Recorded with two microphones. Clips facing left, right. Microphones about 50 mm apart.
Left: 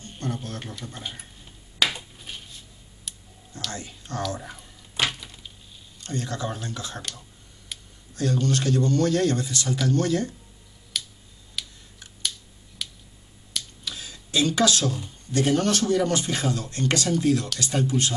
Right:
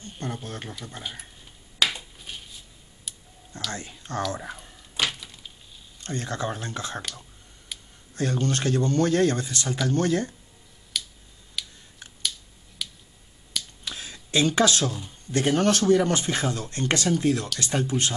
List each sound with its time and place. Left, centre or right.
0.2 s speech: centre
0.9 s speech: centre
1.4 s finger snapping: centre
2.1 s dishes: centre
3.7 s speech: right
4.4 s speech: centre
4.9 s a sound: centre
6.0 s speech: right
8.1 s speech: right
10.9 s finger snapping: centre
11.6 s camera: centre
12.8 s finger snapping: centre
13.8 s speech: right
15.3 s speech: right